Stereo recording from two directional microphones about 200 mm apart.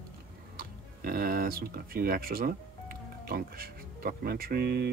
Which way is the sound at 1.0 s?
50° right (ahead or behind).